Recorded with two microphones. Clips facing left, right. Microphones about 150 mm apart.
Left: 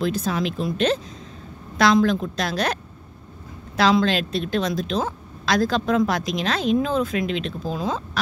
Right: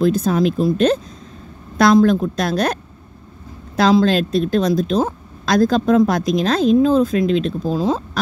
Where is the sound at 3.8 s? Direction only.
40° right (ahead or behind).